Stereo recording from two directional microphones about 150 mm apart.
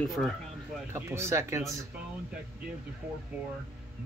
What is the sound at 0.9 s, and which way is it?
Speech, 15° right (ahead or behind).